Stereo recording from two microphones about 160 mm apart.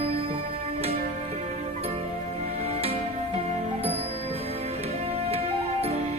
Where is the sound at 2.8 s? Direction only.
40° right (ahead or behind).